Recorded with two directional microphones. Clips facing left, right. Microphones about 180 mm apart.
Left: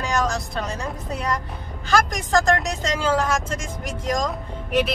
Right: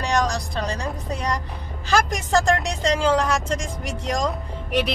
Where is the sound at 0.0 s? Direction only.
5° left (ahead or behind).